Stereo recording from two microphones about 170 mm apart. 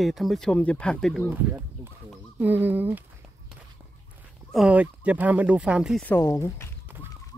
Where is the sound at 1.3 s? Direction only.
15° right (ahead or behind).